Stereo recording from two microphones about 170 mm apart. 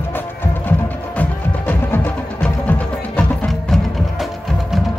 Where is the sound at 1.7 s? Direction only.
10° left (ahead or behind).